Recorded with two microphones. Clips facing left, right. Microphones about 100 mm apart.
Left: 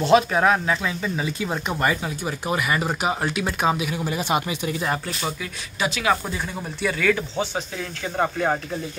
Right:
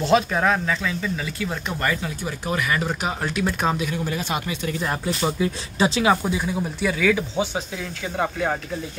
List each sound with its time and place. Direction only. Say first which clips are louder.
0.0 s speech: left 2 dB; 5° left (ahead or behind)
5.4 s speech: right 6 dB; 30° right (ahead or behind)
6.2 s speech: right 5 dB; 5° right (ahead or behind)